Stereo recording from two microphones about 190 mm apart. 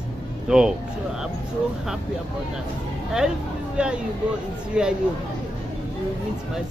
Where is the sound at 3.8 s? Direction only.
5° right (ahead or behind).